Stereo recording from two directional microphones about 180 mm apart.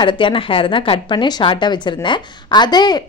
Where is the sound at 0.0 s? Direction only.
30° left (ahead or behind).